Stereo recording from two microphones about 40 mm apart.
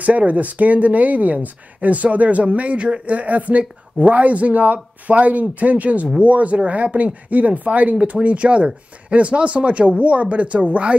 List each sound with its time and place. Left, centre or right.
0.0 s speech: right